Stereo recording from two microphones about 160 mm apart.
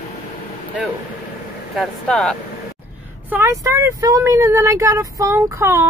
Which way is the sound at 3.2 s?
15° right (ahead or behind).